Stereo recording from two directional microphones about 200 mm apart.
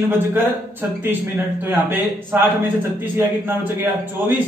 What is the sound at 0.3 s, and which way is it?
Speech, 10° right (ahead or behind).